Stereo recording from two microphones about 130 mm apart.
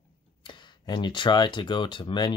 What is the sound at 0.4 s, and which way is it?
Speech, 35° left (ahead or behind).